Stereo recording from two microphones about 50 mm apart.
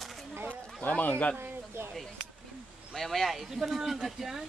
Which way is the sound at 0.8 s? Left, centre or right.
Left.